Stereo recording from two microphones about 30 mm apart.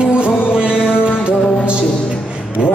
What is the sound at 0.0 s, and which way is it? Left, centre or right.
Music, right.